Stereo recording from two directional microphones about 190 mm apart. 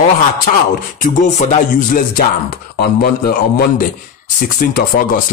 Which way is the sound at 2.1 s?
50° left (ahead or behind).